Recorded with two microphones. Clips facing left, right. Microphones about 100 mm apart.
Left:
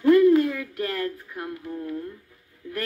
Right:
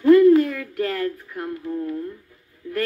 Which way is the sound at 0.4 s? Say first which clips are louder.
Right 2 dB; 15° left (ahead or behind).